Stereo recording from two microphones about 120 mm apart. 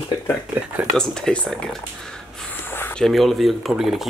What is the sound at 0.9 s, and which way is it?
Speech, 5° left (ahead or behind).